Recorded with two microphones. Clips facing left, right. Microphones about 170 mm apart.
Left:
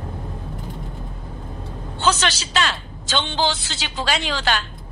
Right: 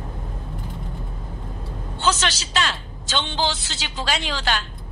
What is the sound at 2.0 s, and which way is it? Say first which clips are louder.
A woman's voice: left 2 dB; 60° left (ahead or behind).